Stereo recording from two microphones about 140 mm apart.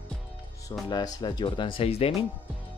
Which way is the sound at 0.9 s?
30° left (ahead or behind).